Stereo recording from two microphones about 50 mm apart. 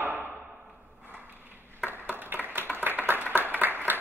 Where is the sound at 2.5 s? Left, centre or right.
Right.